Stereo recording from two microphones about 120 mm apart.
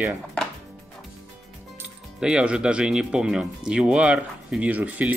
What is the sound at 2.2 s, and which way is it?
Speech, 5° right (ahead or behind).